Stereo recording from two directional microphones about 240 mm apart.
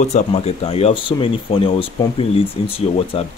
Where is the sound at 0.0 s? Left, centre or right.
Left.